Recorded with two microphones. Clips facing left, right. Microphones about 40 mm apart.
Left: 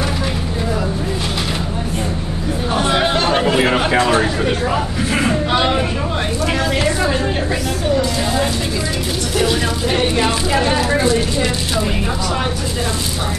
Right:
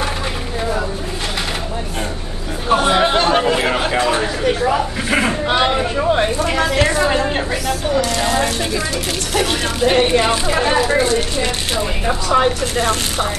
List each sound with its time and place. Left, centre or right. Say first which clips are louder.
2.9 s chatter: even; centre
3.5 s a sound: left 3 dB; centre
5.3 s speech: even; centre
8.0 s speech: right 1 dB; right
9.5 s speech: right 2 dB; right